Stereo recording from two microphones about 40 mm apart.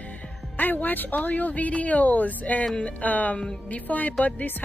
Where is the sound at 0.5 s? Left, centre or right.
Left.